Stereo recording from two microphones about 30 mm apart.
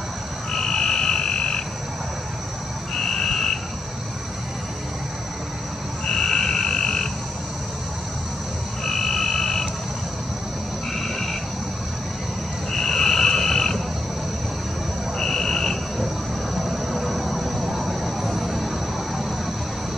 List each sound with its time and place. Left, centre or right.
0.5 s frog: centre
2.9 s frog: centre
6.0 s frog: left
8.8 s frog: centre
12.7 s frog: centre
15.1 s a sound: centre
16.5 s vehicle: centre